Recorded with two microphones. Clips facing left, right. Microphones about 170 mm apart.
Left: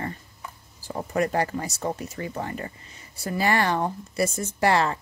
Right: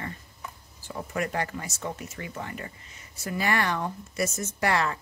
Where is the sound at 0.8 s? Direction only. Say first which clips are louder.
Left 6 dB; 35° left (ahead or behind).